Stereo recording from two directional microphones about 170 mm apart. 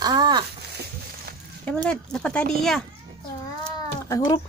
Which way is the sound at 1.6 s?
5° left (ahead or behind).